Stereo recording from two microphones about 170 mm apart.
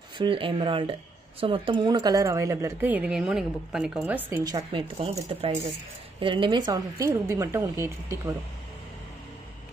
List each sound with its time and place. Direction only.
0.2 s a woman's voice: 30° right (ahead or behind)